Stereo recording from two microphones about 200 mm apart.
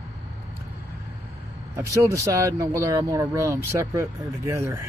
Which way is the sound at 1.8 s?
15° right (ahead or behind).